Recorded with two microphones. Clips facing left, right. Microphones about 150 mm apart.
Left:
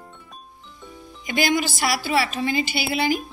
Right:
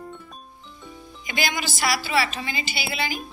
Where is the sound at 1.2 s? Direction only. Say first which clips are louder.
Left 6 dB; 50° left (ahead or behind).